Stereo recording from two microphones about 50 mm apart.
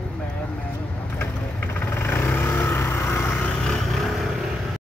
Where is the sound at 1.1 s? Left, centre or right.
Left.